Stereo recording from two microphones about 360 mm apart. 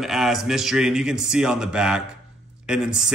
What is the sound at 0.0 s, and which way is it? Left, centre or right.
Speech, centre.